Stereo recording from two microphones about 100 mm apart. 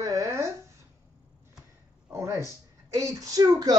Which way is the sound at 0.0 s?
35° right (ahead or behind).